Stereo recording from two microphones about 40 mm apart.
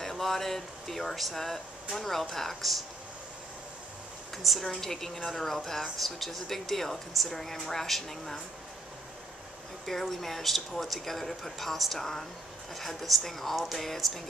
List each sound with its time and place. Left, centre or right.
0.0 s speech: centre
4.4 s a woman's voice: centre
9.8 s a woman's voice: centre